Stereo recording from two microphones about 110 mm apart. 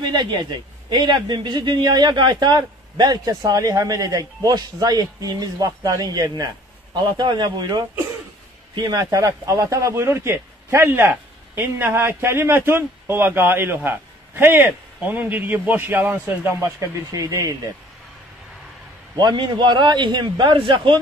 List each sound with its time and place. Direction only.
0.0 s a man's voice: 40° right (ahead or behind); by 16.6 s 20° right (ahead or behind)
17.1 s a man's voice: 35° right (ahead or behind)
19.1 s a man's voice: 40° right (ahead or behind)